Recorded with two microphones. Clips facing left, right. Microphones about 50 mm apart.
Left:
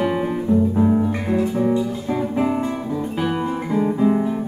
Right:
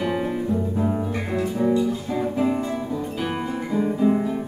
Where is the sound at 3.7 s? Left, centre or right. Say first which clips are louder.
Left 2 dB; centre.